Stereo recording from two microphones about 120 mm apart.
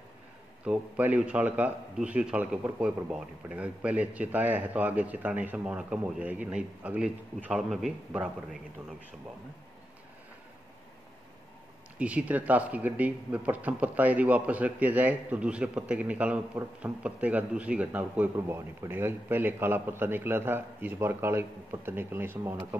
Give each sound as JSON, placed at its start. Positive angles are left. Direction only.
{"t": 0.7, "sound": "a man's voice", "side_deg": -15}
{"t": 12.0, "sound": "a man's voice", "side_deg": -10}